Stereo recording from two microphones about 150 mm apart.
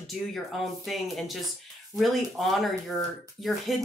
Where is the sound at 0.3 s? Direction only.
Centre (ahead or behind).